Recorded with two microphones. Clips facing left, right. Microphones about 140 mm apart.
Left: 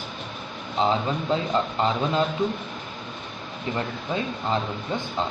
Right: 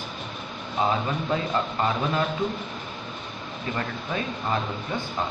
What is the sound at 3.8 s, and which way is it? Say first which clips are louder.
Speech: left 2 dB; 20° left (ahead or behind).